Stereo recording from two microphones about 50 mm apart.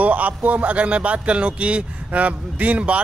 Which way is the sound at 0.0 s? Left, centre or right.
Right.